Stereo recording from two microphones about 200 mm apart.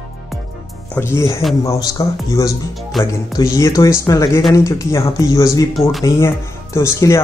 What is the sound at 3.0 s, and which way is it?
Speech, 15° left (ahead or behind).